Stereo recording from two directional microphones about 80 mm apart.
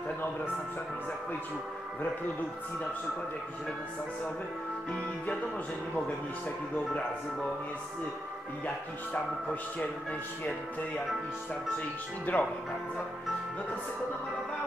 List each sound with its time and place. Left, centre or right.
8.6 s speech: centre
12.3 s speech: left